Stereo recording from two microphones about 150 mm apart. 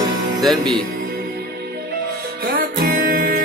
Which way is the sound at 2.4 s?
70° right (ahead or behind).